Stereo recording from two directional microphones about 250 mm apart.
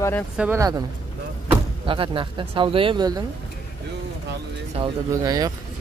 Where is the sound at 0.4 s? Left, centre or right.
Centre.